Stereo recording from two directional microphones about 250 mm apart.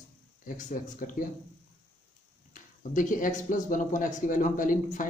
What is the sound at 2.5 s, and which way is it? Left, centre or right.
Speech, left.